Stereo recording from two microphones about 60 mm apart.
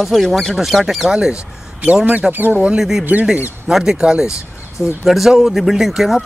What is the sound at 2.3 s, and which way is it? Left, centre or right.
Speech, right.